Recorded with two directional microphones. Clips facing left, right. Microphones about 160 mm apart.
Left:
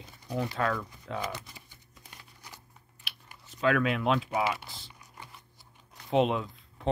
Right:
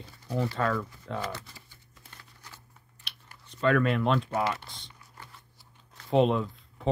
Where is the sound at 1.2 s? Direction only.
15° left (ahead or behind).